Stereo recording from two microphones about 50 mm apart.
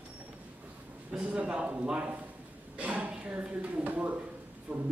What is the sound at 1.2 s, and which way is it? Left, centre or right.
A man's voice, right.